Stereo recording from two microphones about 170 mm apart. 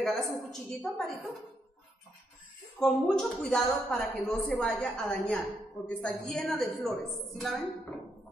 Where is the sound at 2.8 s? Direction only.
5° left (ahead or behind).